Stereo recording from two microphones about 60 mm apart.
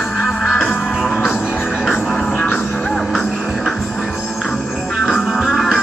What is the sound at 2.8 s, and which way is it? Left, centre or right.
Music, centre.